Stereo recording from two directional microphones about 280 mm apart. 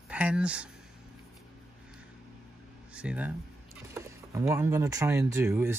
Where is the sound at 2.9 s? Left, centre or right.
Centre.